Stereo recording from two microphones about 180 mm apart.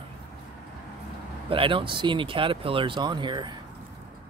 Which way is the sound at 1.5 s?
30° right (ahead or behind).